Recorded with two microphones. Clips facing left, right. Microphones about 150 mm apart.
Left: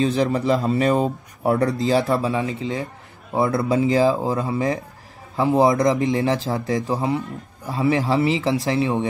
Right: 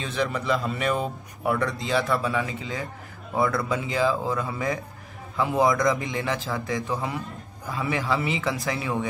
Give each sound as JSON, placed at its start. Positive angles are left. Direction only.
{"t": 0.0, "sound": "speech", "side_deg": 35}